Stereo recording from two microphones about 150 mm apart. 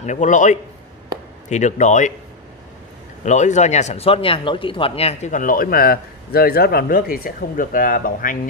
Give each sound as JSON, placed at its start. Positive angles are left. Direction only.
{"t": 0.0, "sound": "speech", "side_deg": 55}
{"t": 3.3, "sound": "speech", "side_deg": 50}